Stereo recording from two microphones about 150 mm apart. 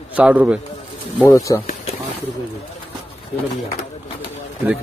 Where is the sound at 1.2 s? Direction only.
20° left (ahead or behind).